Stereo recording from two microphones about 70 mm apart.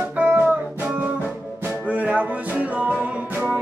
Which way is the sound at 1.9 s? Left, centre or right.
Right.